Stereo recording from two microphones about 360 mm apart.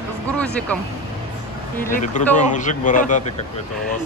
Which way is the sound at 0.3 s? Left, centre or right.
Centre.